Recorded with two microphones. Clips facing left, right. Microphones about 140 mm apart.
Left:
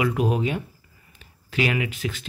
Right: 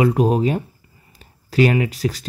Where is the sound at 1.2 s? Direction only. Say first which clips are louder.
Right 8 dB; 40° right (ahead or behind).